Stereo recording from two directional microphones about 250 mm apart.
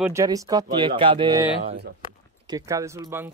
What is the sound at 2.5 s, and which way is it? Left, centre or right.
Speech, centre.